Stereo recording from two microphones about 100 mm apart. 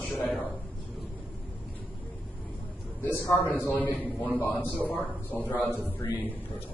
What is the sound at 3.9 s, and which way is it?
Speech, 20° right (ahead or behind).